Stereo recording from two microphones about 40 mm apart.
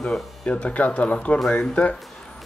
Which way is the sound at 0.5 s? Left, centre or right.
Left.